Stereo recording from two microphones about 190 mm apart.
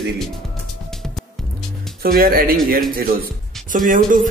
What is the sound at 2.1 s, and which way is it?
Speech, 50° right (ahead or behind).